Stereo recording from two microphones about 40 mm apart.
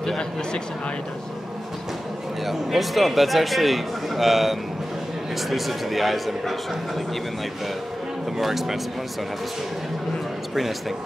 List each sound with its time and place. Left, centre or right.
0.0 s speech: centre
2.4 s speech: centre
8.4 s speech: centre